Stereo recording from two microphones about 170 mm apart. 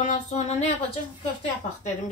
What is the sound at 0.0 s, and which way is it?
Speech, 45° left (ahead or behind).